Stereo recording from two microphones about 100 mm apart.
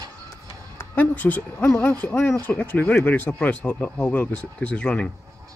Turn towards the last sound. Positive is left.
turn(degrees=10)  # may be behind; listen again after turning